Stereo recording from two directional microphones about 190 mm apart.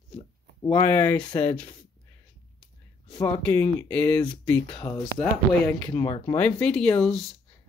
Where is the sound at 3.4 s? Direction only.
10° left (ahead or behind).